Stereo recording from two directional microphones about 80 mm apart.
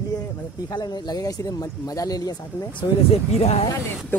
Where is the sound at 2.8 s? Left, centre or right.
Left.